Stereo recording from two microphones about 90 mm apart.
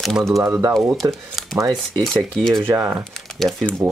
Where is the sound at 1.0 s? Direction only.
45° right (ahead or behind).